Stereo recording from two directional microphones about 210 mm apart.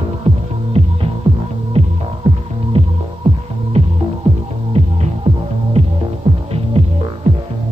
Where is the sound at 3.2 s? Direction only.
30° right (ahead or behind).